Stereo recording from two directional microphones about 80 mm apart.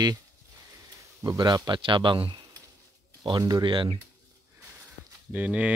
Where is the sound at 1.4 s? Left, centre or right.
Right.